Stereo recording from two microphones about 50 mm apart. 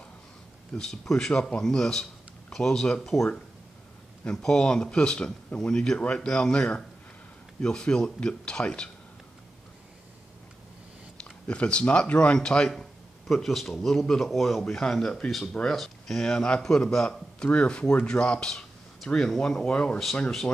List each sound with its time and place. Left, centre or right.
0.7 s speech: centre
4.3 s speech: centre
11.1 s speech: left
13.3 s a man's voice: centre
14.6 s speech: centre
17.5 s speech: left